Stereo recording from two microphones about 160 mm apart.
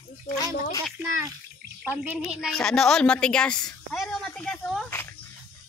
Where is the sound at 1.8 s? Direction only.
10° right (ahead or behind).